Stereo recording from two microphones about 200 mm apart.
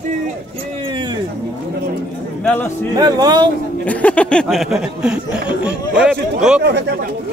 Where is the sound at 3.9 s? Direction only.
5° left (ahead or behind).